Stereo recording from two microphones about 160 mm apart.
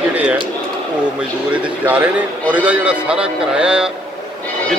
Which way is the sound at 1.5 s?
10° right (ahead or behind).